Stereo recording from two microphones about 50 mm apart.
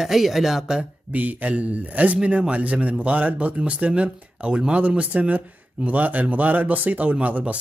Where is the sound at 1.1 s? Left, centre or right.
Right.